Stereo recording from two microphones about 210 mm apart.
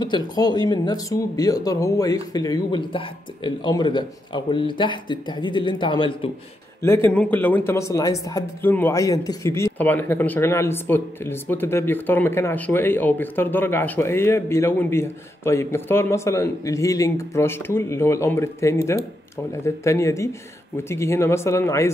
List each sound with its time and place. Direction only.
0.0 s speech: 20° left (ahead or behind)
6.8 s speech: 10° left (ahead or behind)